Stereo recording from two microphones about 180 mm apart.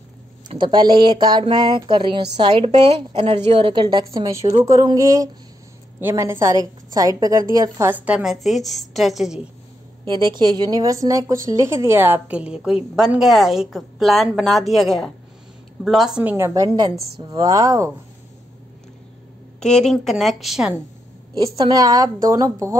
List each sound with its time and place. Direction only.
0.5 s a woman's voice: 25° right (ahead or behind); by 9.5 s 5° right (ahead or behind)
10.0 s a woman's voice: 25° right (ahead or behind)
19.6 s a woman's voice: 5° left (ahead or behind)
21.5 s a woman's voice: 25° right (ahead or behind)